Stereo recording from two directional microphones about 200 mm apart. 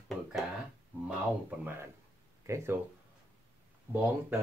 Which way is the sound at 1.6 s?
10° right (ahead or behind).